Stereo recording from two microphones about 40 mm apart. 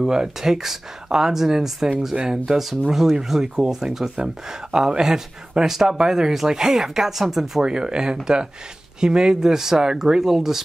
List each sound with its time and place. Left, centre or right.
0.0 s speech: centre
7.6 s speech: centre